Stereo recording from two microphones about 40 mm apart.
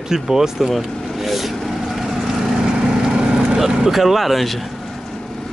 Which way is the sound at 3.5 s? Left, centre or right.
Centre.